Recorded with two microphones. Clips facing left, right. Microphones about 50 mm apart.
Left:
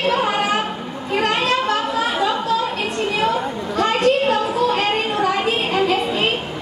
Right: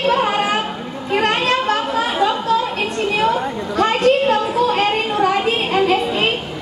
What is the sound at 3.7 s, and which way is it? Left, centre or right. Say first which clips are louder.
Chatter: right 2 dB; right.